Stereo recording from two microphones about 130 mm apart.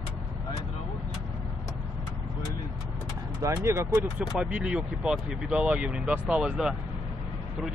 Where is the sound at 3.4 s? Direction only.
25° right (ahead or behind).